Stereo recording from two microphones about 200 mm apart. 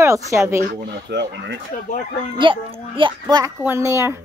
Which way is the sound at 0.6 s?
55° right (ahead or behind).